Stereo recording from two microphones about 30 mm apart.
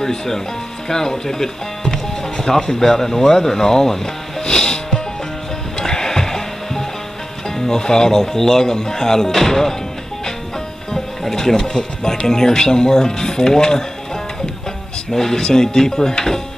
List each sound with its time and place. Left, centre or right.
0.8 s speech: centre
5.8 s music: left
7.5 s speech: centre
11.2 s speech: centre
15.0 s speech: centre